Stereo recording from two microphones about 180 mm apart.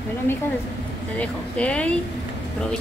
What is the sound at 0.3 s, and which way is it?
Speech, 10° left (ahead or behind).